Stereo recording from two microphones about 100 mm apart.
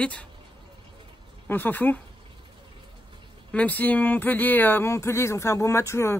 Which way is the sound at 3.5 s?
15° left (ahead or behind).